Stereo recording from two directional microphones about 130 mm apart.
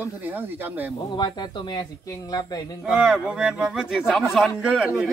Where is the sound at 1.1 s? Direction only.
35° left (ahead or behind).